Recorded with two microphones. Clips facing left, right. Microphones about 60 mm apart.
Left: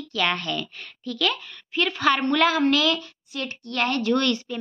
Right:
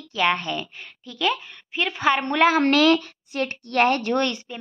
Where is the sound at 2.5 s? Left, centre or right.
Right.